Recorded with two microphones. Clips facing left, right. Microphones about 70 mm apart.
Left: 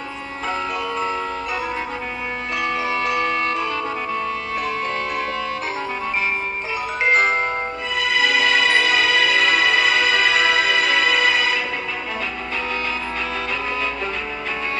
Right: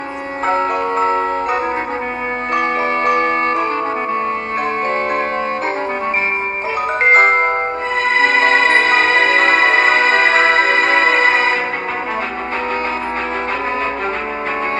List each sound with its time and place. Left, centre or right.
0.5 s music: right
7.0 s glockenspiel: right
8.0 s music: right